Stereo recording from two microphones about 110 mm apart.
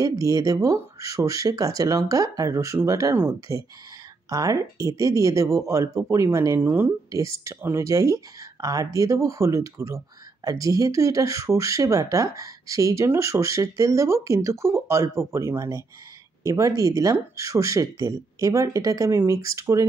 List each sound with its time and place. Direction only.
0.0 s speech: 30° right (ahead or behind)